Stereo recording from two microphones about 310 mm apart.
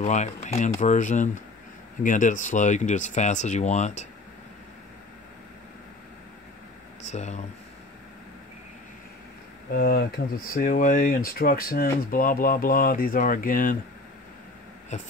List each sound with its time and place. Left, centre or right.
0.0 s speech: left
7.1 s speech: left
9.8 s speech: left
14.9 s speech: left